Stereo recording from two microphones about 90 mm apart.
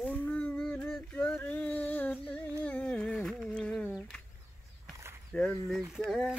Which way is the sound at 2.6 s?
15° left (ahead or behind).